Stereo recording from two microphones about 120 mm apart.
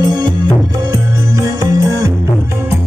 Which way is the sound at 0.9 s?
30° right (ahead or behind).